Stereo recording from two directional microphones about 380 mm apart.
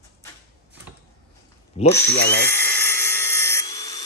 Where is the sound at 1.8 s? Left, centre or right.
Left.